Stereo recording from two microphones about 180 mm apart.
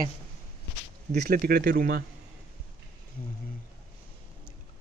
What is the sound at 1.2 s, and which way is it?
Speech, 60° right (ahead or behind).